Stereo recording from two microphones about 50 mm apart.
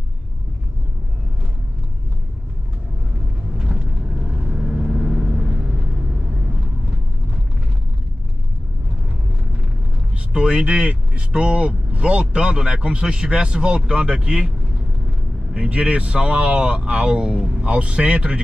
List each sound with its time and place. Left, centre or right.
3.5 s vehicle: centre
10.1 s speech: centre
15.5 s speech: right